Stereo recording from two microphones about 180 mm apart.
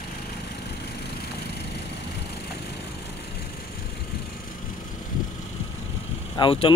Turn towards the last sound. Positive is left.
turn(degrees=30)  # may be behind; listen again after turning